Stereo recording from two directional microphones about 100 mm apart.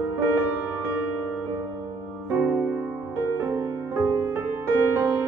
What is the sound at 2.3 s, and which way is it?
Music, 20° right (ahead or behind).